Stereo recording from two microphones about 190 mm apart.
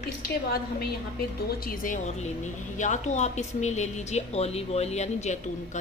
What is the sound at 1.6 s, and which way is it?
A woman's voice, 45° left (ahead or behind).